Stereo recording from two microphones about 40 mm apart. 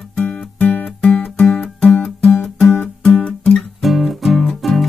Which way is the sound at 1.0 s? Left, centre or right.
Left.